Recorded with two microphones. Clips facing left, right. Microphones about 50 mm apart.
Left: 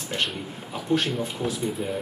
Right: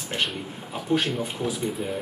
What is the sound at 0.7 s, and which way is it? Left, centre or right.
Speech, centre.